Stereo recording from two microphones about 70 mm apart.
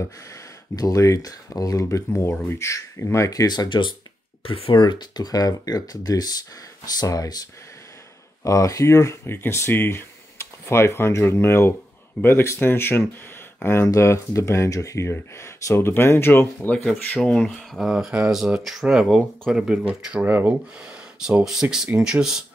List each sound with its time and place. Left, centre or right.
0.0 s speech: left
2.4 s speech: left
2.7 s speech: left
4.7 s speech: left
8.5 s speech: left
17.1 s speech: centre
20.2 s speech: right
20.8 s speech: centre